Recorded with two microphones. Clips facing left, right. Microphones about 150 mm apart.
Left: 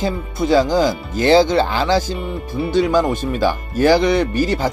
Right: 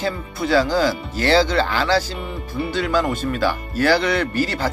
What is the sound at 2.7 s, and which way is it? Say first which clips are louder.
Speech: left 5 dB; 20° left (ahead or behind).